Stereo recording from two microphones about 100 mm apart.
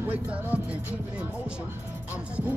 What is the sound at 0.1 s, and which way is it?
Music, 15° right (ahead or behind).